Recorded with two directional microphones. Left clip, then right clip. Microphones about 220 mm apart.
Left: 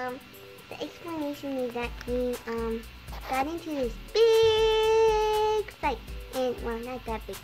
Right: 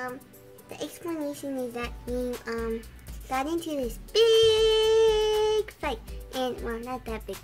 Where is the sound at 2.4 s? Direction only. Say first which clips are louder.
Even; 35° right (ahead or behind).